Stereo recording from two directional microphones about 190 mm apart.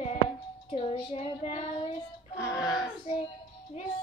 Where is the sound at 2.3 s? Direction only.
20° left (ahead or behind).